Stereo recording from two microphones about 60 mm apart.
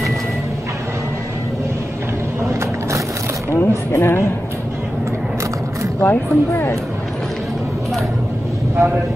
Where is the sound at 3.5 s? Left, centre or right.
Left.